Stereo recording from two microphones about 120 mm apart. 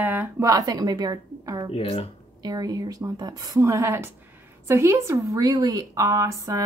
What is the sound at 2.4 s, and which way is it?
A woman's voice, 35° right (ahead or behind).